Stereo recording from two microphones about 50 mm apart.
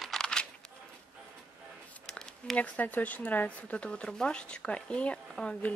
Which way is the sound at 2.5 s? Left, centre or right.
Left.